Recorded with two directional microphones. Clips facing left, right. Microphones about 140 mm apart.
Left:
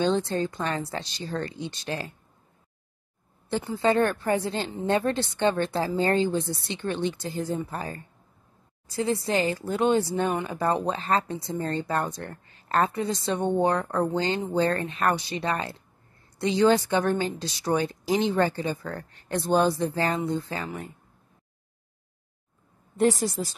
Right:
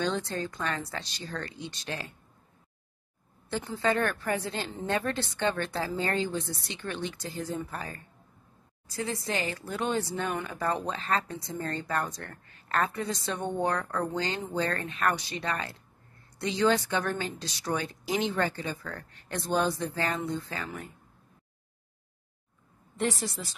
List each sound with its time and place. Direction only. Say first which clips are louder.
0.0 s a woman's voice: left 6 dB; 25° left (ahead or behind)
3.8 s a woman's voice: left 5 dB; 25° left (ahead or behind)
22.9 s a woman's voice: left 8 dB; 40° left (ahead or behind)